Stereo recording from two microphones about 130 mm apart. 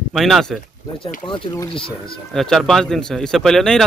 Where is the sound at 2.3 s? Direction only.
Centre (ahead or behind).